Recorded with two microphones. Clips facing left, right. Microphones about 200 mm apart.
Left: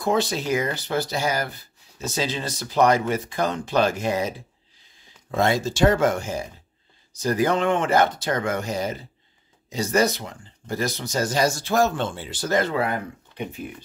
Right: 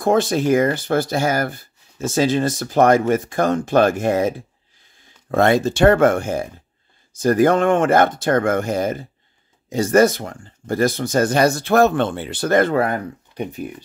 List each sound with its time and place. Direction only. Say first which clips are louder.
0.0 s speech: right 6 dB; 50° right (ahead or behind)